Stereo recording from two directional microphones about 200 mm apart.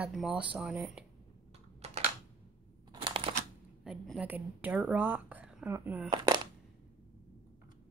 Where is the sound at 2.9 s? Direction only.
25° right (ahead or behind).